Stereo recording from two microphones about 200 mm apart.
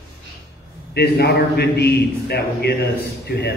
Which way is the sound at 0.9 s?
55° left (ahead or behind).